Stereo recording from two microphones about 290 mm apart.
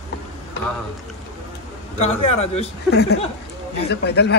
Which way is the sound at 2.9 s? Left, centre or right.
Left.